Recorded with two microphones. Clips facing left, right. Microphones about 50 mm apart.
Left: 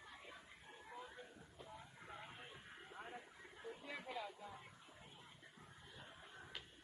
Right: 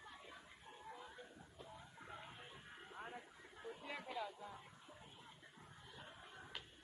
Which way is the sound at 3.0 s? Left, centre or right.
Centre.